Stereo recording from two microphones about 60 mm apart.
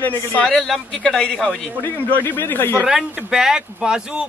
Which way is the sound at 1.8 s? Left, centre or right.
Left.